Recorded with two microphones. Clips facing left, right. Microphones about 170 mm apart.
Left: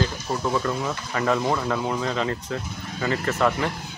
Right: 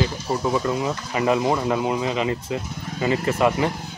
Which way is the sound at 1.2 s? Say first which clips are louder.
Right 3 dB; 15° right (ahead or behind).